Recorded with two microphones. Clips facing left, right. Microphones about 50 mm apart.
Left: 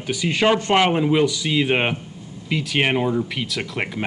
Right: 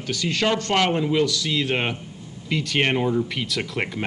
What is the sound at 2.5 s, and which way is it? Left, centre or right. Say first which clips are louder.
Speech: left 1 dB; centre.